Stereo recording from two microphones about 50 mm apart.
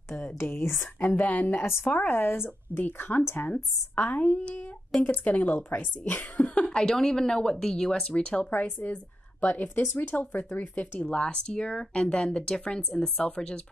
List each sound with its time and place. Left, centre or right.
0.4 s speech: left
1.1 s a woman's voice: left
6.6 s speech: centre
8.5 s a woman's voice: left; by 13.6 s centre